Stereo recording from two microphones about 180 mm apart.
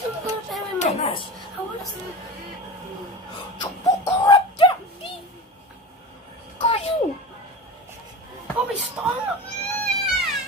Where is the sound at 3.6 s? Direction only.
25° left (ahead or behind).